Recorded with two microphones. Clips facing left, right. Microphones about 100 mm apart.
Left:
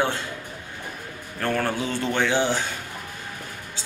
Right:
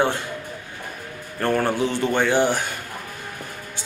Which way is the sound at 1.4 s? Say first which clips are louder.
Right 4 dB; 15° right (ahead or behind).